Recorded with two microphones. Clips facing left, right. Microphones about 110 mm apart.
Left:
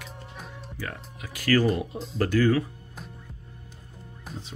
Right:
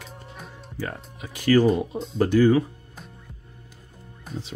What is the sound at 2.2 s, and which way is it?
Speech, 20° right (ahead or behind).